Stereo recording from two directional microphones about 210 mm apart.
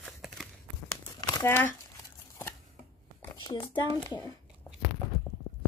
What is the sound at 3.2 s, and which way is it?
Speech, 20° left (ahead or behind).